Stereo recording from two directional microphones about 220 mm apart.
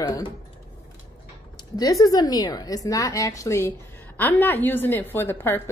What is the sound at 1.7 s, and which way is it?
A woman's voice, 15° left (ahead or behind).